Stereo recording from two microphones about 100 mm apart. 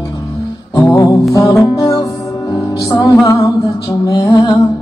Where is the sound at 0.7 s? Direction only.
30° left (ahead or behind).